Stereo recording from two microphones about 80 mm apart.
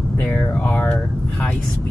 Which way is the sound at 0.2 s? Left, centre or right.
Centre.